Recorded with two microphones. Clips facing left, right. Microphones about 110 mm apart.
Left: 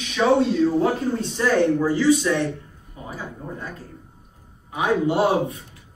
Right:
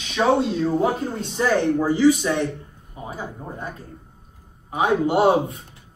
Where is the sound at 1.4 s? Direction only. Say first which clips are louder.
Even; 15° right (ahead or behind).